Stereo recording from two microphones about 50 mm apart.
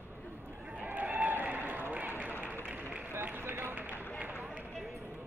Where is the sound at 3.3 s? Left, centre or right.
Right.